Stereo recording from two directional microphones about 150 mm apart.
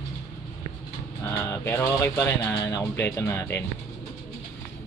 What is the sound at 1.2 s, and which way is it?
A man's voice, 15° left (ahead or behind).